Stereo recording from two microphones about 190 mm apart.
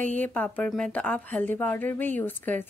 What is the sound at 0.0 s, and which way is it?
Speech, 10° left (ahead or behind).